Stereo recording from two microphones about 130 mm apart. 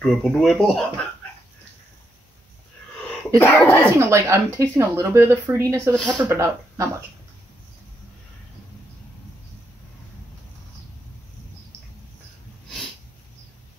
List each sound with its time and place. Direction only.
0.0 s speech: centre (ahead or behind)
3.3 s speech: 20° left (ahead or behind)
4.0 s speech: 20° right (ahead or behind)